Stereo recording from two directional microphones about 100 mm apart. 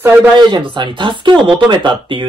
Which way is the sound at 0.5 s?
50° right (ahead or behind).